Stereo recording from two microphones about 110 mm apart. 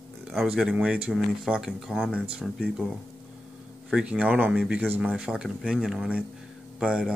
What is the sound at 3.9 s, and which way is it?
Speech, 10° right (ahead or behind).